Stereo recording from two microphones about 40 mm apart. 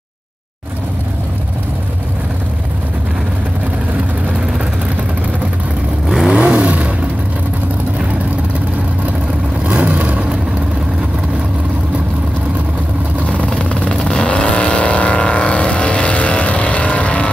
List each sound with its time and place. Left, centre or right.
6.2 s vehicle: right
9.7 s vehicle: right
13.5 s vehicle: left